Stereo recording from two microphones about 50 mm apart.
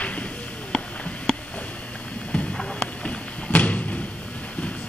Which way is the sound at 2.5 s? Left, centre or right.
Centre.